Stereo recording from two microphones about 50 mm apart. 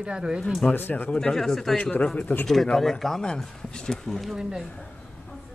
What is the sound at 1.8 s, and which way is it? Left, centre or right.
Speech, left.